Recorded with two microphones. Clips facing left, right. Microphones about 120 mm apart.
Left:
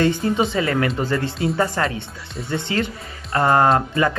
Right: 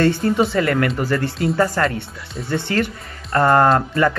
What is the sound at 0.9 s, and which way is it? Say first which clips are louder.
Speech: right 2 dB; 25° left (ahead or behind).